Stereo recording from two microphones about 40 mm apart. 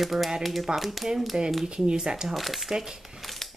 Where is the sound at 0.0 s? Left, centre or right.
Centre.